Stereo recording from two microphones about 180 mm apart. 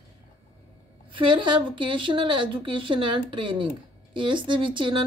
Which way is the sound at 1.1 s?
25° right (ahead or behind).